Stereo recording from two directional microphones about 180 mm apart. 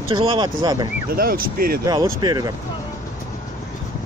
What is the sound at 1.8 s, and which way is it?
Speech, 25° right (ahead or behind).